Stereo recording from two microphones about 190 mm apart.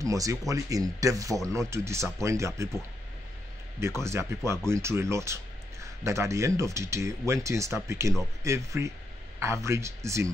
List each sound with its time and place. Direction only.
0.0 s speech: 15° right (ahead or behind)
3.8 s speech: 15° right (ahead or behind)